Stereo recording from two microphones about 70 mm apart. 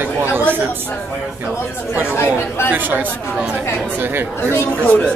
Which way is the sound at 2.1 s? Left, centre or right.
Left.